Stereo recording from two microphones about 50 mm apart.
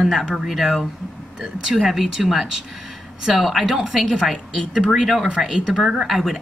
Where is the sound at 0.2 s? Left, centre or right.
Centre.